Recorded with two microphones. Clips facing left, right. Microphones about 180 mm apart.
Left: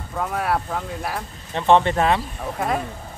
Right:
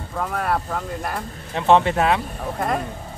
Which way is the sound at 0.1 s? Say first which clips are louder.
Even; 5° left (ahead or behind).